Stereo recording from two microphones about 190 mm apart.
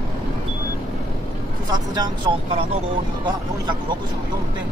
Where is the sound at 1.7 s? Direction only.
20° right (ahead or behind).